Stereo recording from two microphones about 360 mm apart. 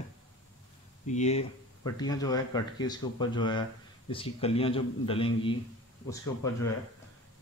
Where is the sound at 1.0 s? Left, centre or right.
Centre.